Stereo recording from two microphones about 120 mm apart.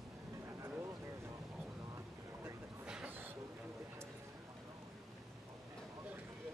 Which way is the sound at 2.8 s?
10° right (ahead or behind).